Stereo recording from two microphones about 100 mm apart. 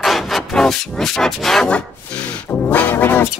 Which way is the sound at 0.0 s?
Centre (ahead or behind).